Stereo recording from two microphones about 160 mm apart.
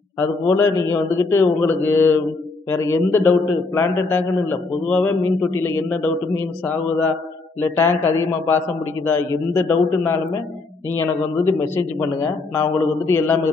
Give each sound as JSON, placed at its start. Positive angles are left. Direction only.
{"t": 0.6, "sound": "a man's voice", "side_deg": 20}